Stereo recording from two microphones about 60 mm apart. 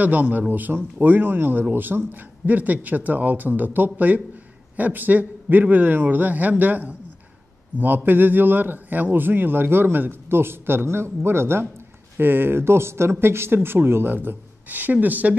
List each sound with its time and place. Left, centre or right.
0.0 s a man's voice: right